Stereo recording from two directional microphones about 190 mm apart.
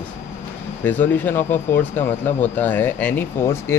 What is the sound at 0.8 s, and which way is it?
Speech, 10° left (ahead or behind).